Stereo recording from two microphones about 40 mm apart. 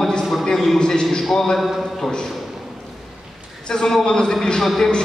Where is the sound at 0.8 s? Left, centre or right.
Centre.